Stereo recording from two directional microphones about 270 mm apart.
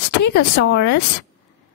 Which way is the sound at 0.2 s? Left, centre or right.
Left.